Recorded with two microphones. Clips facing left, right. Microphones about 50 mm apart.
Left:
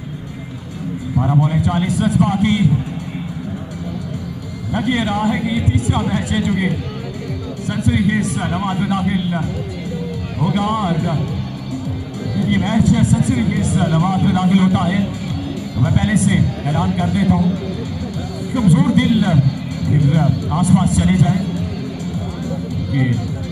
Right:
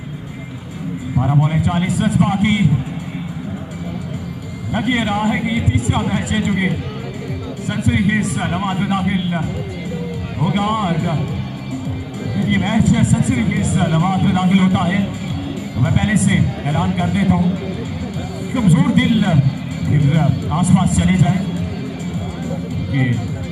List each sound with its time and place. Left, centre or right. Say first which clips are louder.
1.1 s a man's voice: even; centre
1.4 s a man's voice: even; right
4.7 s a man's voice: even; right
12.4 s a man's voice: even; right
22.5 s music: even; right